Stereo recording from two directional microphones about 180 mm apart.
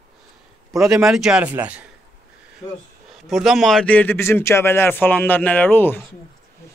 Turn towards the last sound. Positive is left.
turn(degrees=10)  # may be behind; listen again after turning